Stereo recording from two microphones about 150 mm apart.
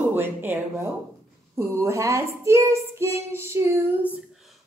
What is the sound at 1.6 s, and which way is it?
Child singing, 20° right (ahead or behind).